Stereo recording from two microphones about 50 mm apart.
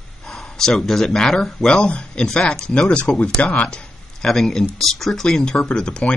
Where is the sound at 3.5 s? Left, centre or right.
Left.